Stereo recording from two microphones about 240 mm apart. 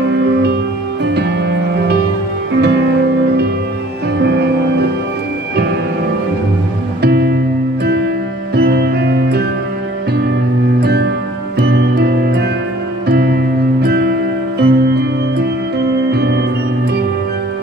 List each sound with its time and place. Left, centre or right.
1.0 s music: right
2.6 s music: right
4.2 s music: right
7.0 s music: right
8.5 s music: right
10.8 s music: right
13.7 s music: right